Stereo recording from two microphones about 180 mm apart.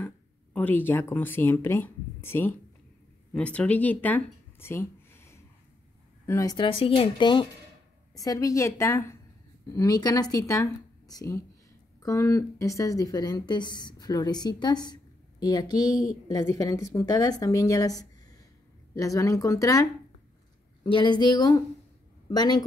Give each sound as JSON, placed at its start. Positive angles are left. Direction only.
{"t": 0.0, "sound": "a woman's voice", "side_deg": 10}